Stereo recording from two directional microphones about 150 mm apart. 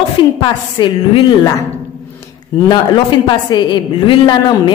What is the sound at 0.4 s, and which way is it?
A woman's voice, 30° left (ahead or behind).